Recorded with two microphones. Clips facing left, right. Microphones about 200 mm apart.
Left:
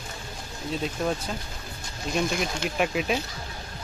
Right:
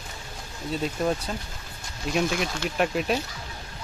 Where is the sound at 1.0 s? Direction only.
Centre (ahead or behind).